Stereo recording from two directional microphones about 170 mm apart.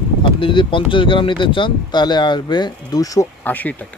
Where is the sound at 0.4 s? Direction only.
30° left (ahead or behind); by 3.7 s 10° left (ahead or behind).